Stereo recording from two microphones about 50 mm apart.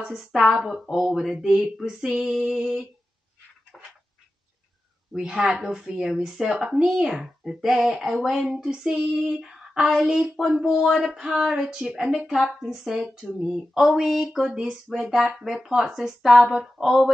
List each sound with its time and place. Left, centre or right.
0.2 s speech: centre
3.7 s a sound: centre
5.1 s speech: centre